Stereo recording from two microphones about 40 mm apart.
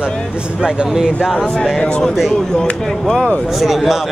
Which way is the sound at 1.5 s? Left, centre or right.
Centre.